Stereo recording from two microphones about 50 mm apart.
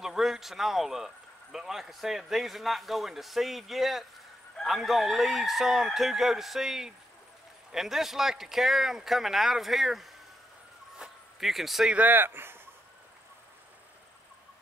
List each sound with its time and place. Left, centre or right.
0.0 s a man's voice: centre
11.0 s a sound: centre
11.3 s a man's voice: centre
12.1 s speech: right